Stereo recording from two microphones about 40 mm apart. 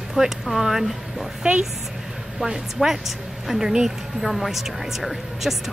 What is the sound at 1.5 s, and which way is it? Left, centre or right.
Speech, right.